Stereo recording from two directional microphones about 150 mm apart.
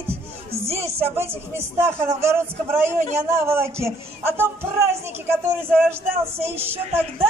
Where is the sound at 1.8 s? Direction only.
20° right (ahead or behind).